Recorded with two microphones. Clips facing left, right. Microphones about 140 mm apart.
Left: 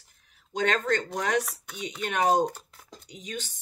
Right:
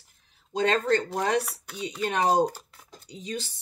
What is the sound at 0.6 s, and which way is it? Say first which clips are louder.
Speech: right 3 dB; 30° right (ahead or behind).